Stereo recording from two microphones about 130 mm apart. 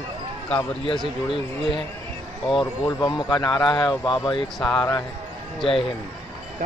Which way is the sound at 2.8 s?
30° left (ahead or behind).